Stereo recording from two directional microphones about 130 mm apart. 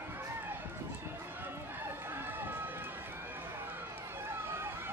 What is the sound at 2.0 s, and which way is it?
Run, 15° right (ahead or behind).